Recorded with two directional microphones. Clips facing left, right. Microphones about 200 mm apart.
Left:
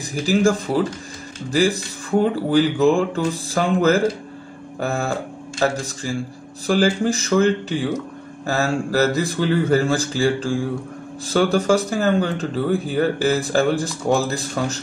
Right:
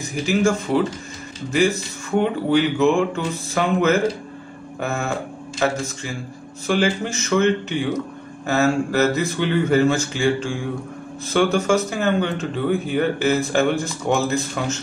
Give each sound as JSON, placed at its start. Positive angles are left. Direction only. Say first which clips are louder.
{"t": 0.0, "sound": "speech", "louder": "left 2 dB", "side_deg": 35}